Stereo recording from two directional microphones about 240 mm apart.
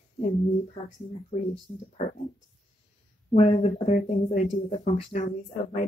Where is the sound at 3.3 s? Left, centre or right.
Left.